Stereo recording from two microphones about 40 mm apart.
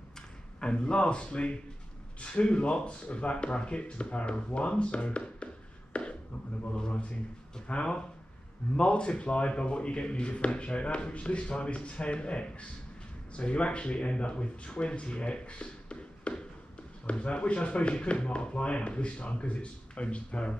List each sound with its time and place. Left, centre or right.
0.6 s speech: left
5.9 s a sound: left
6.9 s a man's voice: left